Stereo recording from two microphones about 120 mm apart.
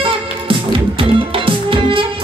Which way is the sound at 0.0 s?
45° right (ahead or behind).